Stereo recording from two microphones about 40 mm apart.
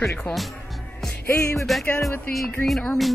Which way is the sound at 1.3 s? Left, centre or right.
Centre.